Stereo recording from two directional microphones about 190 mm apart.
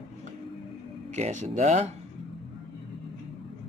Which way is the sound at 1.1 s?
40° right (ahead or behind).